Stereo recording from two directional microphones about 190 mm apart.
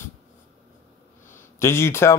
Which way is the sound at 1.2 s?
15° left (ahead or behind).